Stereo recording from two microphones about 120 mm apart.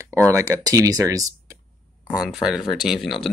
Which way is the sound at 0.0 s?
25° right (ahead or behind).